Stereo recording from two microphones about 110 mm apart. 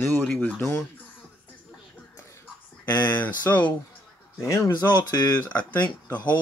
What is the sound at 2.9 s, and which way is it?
Speech, 15° left (ahead or behind).